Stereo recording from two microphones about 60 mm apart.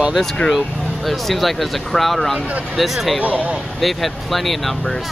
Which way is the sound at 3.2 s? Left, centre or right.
Right.